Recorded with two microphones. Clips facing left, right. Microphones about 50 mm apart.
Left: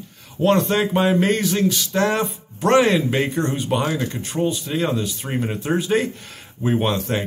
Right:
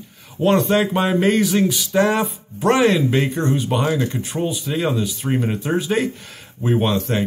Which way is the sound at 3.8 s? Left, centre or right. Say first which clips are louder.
Right 3 dB; right.